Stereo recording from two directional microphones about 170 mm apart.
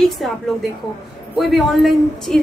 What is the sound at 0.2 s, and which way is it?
Speech, centre (ahead or behind).